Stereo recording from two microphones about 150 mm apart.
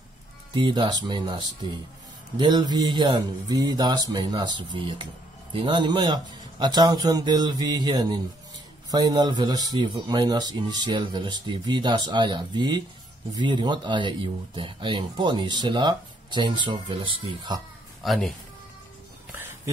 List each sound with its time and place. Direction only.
0.6 s speech: 30° right (ahead or behind)
18.0 s speech: centre (ahead or behind)
19.3 s a sound: 15° right (ahead or behind)